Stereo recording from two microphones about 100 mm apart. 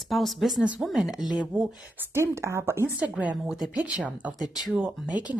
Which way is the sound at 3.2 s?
15° right (ahead or behind).